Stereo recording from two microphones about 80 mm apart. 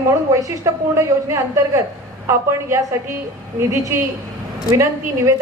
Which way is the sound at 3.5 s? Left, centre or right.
Right.